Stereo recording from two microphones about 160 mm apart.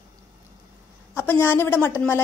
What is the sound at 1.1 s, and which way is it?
Speech, 10° left (ahead or behind).